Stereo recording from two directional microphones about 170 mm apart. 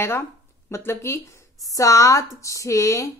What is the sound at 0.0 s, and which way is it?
Speech, 15° left (ahead or behind).